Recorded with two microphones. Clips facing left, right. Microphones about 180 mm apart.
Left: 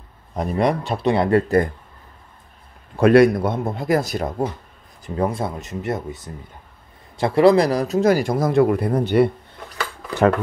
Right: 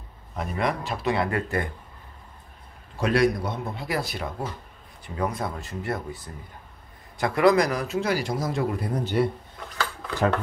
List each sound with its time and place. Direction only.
0.4 s speech: 35° left (ahead or behind)
3.0 s speech: 60° left (ahead or behind)
5.0 s speech: 30° left (ahead or behind); by 9.3 s 60° left (ahead or behind)